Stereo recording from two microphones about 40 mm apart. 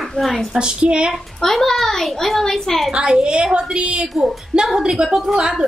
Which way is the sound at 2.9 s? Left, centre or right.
Right.